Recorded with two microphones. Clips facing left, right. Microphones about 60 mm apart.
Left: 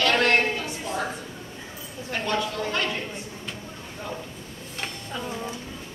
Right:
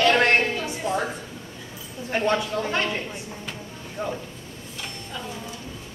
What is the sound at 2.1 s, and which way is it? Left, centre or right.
Speech, right.